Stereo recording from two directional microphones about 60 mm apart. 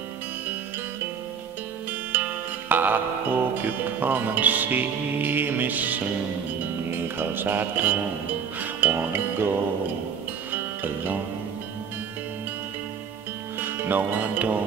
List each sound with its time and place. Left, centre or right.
2.1 s music: right
2.7 s speech: right
6.9 s music: right
13.6 s speech: right